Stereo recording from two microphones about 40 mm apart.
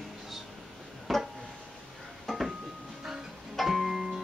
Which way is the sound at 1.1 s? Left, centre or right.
Centre.